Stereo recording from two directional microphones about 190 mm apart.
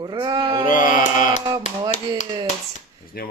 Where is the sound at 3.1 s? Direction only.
55° left (ahead or behind).